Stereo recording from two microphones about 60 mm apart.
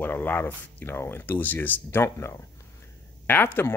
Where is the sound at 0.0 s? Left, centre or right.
Left.